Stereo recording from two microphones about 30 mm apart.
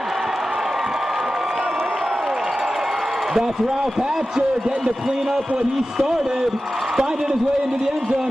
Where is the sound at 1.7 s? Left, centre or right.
Centre.